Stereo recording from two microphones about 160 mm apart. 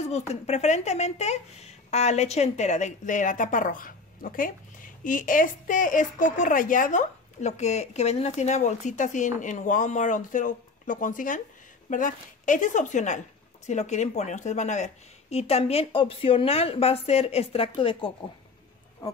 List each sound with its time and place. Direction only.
0.0 s speech: 45° left (ahead or behind)